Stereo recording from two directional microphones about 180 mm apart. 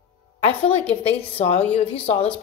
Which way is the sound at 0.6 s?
30° left (ahead or behind).